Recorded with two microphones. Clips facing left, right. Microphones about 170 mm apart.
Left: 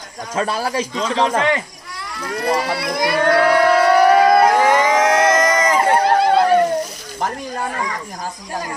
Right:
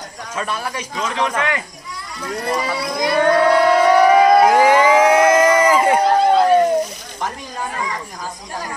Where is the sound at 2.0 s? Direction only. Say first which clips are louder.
Left 2 dB; 70° left (ahead or behind).